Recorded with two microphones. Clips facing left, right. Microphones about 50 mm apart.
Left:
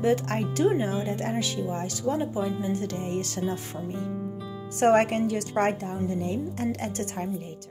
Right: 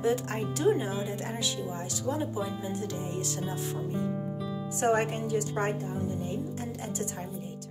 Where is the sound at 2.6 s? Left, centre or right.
Left.